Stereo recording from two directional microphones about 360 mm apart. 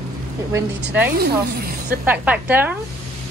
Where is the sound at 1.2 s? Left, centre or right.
Right.